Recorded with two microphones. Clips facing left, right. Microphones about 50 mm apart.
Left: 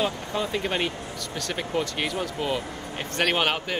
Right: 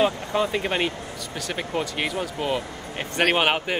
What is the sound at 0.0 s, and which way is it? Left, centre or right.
A man's voice, right.